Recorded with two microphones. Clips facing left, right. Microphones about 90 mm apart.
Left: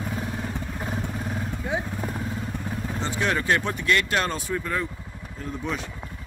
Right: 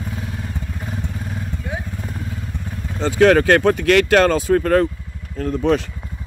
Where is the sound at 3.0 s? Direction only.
90° right; by 5.8 s 70° right (ahead or behind).